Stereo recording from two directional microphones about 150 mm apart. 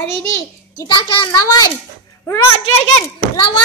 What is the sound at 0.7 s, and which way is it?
A child's voice, 30° left (ahead or behind).